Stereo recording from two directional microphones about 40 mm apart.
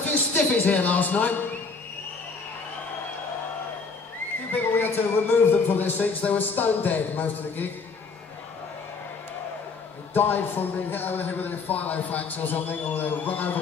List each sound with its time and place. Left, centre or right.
0.3 s speech: left
4.5 s a man's voice: left
10.1 s a man's voice: left